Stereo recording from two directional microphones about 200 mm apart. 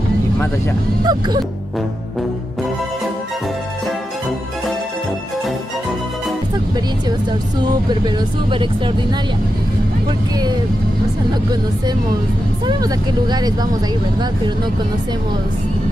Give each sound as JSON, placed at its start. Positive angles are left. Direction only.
{"t": 1.0, "sound": "speech", "side_deg": -20}
{"t": 7.6, "sound": "speech", "side_deg": -20}
{"t": 12.6, "sound": "speech", "side_deg": -20}